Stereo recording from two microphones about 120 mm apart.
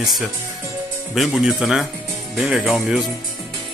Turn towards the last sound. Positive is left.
turn(degrees=-5)  # may be behind; listen again after turning